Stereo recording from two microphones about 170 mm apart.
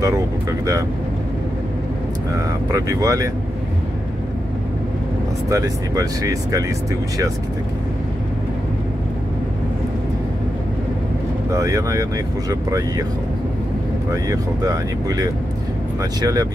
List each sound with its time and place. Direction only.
0.0 s speech: 20° right (ahead or behind)
2.7 s speech: 20° right (ahead or behind)
5.5 s speech: 20° right (ahead or behind)
11.5 s speech: 20° right (ahead or behind)
14.1 s speech: 20° right (ahead or behind)